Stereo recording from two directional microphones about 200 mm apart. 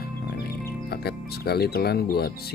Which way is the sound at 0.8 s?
50° left (ahead or behind).